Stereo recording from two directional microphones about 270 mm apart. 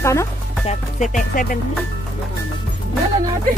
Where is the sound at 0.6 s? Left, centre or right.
Left.